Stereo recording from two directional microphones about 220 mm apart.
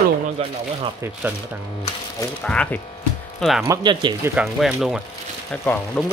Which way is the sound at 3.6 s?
15° right (ahead or behind).